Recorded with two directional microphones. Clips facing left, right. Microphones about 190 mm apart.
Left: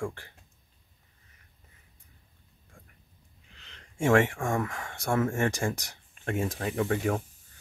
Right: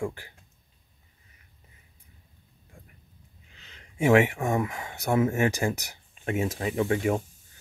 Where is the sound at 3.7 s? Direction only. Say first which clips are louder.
Right 3 dB; 5° right (ahead or behind).